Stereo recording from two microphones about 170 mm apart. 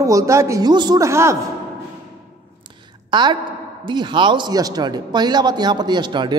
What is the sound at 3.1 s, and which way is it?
A woman's voice, 25° right (ahead or behind).